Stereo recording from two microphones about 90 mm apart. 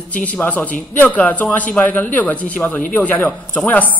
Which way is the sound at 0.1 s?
15° left (ahead or behind).